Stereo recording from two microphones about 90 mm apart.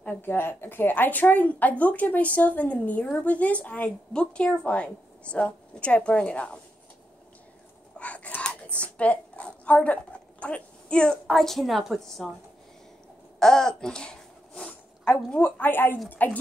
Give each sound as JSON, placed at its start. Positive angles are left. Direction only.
{"t": 0.0, "sound": "speech", "side_deg": 25}
{"t": 8.0, "sound": "whispering", "side_deg": 15}
{"t": 8.7, "sound": "a woman's voice", "side_deg": 15}
{"t": 13.4, "sound": "babbling", "side_deg": 5}
{"t": 15.3, "sound": "a woman's voice", "side_deg": 20}